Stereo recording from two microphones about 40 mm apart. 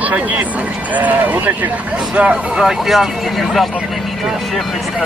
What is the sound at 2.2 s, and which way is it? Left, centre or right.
Speech, right.